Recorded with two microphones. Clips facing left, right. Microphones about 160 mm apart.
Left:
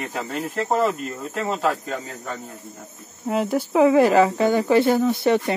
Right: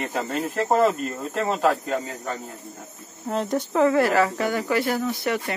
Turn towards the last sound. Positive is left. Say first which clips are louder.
# left 6 dB
turn(degrees=25)  # may be behind; listen again after turning